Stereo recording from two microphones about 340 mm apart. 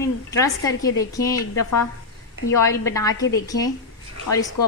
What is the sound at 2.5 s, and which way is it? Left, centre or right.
A woman's voice, centre.